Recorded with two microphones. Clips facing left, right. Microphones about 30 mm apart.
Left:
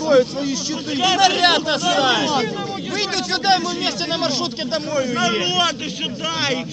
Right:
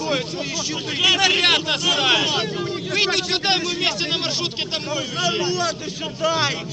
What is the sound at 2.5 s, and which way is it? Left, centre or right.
Speech, right.